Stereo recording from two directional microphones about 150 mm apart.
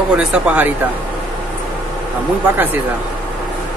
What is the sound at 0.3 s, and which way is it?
Speech, 10° right (ahead or behind).